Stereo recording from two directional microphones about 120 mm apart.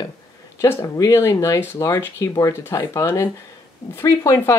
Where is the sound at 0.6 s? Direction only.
25° left (ahead or behind).